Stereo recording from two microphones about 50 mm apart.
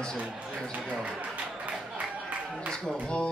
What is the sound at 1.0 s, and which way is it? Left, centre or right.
Speech, right.